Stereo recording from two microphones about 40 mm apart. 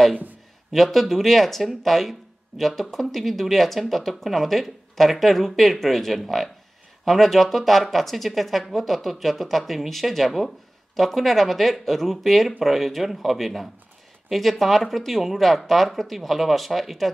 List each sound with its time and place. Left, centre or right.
0.7 s speech: centre